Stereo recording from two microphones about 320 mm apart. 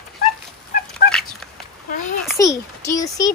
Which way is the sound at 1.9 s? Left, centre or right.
Left.